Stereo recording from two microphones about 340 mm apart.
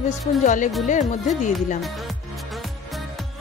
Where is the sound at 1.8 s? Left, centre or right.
Centre.